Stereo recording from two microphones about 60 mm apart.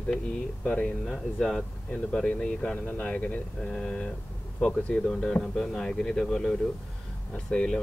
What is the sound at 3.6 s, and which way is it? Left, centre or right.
Speech, centre.